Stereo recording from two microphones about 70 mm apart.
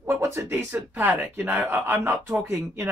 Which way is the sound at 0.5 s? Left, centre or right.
Right.